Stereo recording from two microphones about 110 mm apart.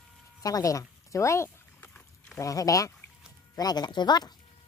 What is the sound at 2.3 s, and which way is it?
Speech, 30° left (ahead or behind).